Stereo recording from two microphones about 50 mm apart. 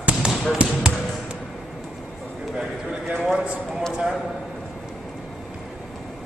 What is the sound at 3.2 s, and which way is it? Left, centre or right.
Speech, centre.